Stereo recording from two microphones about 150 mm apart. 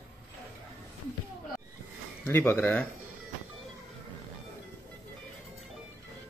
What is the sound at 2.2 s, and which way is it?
Cutlery, 15° left (ahead or behind).